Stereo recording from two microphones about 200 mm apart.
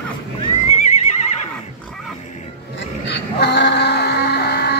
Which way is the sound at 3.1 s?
60° left (ahead or behind).